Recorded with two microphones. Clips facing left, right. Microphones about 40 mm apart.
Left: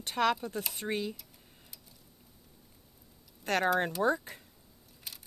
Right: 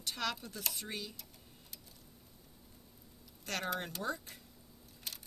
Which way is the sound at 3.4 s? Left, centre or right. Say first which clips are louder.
Left 10 dB; left.